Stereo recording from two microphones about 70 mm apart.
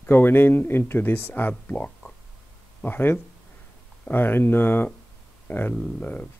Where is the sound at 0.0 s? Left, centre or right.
Left.